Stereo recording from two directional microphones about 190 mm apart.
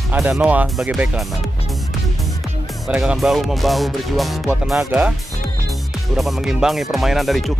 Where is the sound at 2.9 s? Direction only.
5° right (ahead or behind).